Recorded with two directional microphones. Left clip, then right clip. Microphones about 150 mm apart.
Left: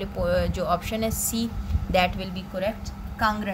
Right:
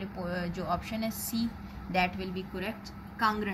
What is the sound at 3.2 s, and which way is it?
Speech, 35° left (ahead or behind).